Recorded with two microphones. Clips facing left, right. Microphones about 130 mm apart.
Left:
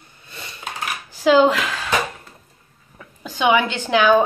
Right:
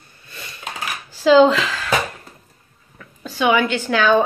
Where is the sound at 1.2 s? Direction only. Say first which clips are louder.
Right 2 dB; 10° left (ahead or behind).